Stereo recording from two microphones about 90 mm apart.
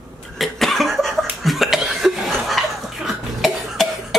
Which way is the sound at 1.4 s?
Centre (ahead or behind).